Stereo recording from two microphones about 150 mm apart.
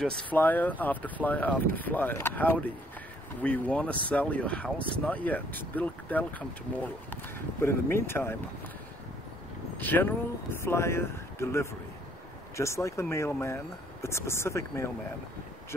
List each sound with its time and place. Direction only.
0.0 s speech: 10° left (ahead or behind)
9.8 s speech: 10° left (ahead or behind)